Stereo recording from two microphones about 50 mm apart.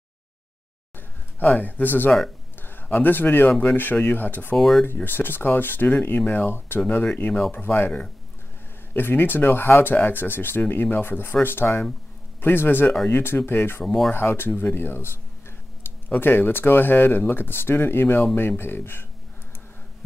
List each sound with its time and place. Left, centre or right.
1.6 s speech: left
4.6 s speech: centre
4.8 s speech: left
13.8 s speech: centre
14.1 s speech: left
16.1 s speech: left